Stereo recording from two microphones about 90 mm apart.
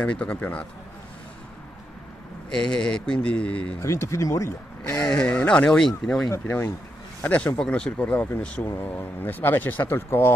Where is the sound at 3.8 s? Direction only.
30° left (ahead or behind).